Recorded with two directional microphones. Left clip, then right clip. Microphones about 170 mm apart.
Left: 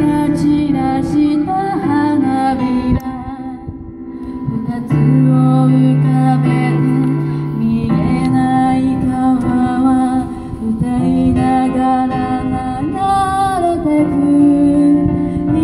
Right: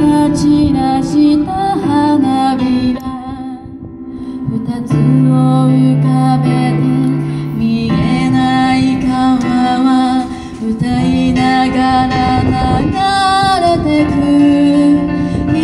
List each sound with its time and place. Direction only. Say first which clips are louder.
0.0 s music: right 3 dB; 30° right (ahead or behind)
4.9 s music: right 1 dB; 30° right (ahead or behind)